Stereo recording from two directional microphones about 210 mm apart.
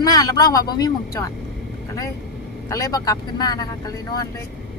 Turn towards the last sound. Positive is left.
turn(degrees=15)  # may be behind; listen again after turning